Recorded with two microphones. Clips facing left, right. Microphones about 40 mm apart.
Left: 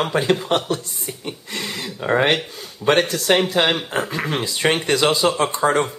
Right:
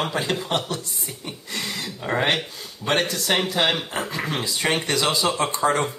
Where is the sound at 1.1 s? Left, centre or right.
Left.